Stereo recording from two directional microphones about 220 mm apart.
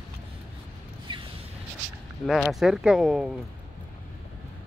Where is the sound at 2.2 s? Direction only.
Centre (ahead or behind).